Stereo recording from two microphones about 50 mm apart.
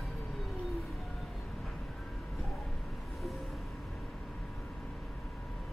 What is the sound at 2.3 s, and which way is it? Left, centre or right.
Vehicle, centre.